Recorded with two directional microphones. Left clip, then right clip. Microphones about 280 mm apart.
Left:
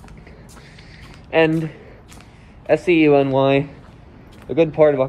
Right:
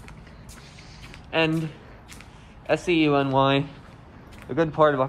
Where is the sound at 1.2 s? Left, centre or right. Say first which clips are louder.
Left 7 dB; centre.